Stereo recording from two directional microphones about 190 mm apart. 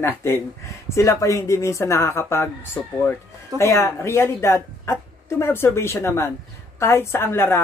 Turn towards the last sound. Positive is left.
turn(degrees=10)  # may be behind; listen again after turning